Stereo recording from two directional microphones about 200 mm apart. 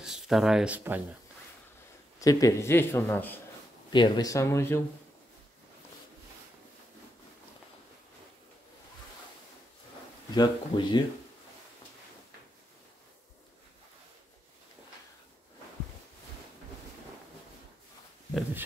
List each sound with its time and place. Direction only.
0.0 s speech: centre (ahead or behind)
2.1 s speech: 15° left (ahead or behind)
3.9 s speech: 20° left (ahead or behind)
10.3 s speech: 20° left (ahead or behind)